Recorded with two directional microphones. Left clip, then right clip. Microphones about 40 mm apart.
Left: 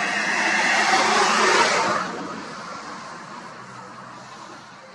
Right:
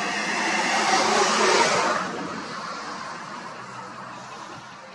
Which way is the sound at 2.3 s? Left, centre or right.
Right.